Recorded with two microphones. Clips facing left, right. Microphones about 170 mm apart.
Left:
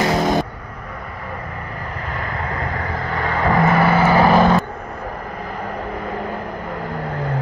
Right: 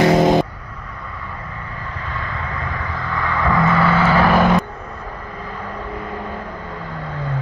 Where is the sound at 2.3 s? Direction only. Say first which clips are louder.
Left 2 dB; 40° left (ahead or behind).